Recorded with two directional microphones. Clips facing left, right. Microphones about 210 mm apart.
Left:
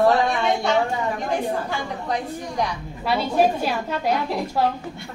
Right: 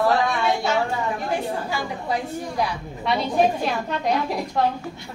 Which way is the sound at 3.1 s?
5° left (ahead or behind).